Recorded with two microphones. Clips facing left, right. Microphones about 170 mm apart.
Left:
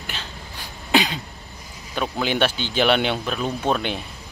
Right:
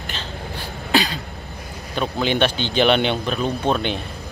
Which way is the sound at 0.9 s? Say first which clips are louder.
Even; 20° left (ahead or behind).